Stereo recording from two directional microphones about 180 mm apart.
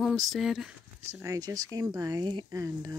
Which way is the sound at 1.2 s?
20° right (ahead or behind).